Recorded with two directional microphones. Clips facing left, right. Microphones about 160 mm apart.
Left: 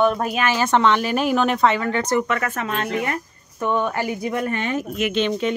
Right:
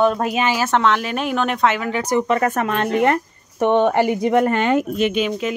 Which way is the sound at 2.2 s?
35° right (ahead or behind).